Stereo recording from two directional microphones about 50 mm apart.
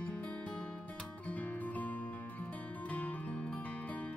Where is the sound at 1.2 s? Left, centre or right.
Left.